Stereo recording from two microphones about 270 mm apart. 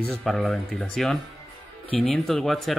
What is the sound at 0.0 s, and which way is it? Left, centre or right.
Speech, centre.